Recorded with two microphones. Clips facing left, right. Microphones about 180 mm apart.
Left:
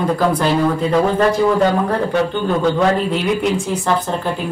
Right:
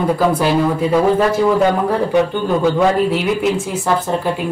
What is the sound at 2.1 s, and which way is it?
Speech, 10° right (ahead or behind).